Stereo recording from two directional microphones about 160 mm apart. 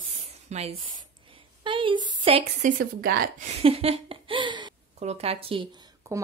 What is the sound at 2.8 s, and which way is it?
Speech, 70° right (ahead or behind).